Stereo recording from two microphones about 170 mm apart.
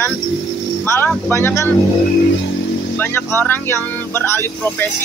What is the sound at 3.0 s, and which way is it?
Speech, 15° left (ahead or behind).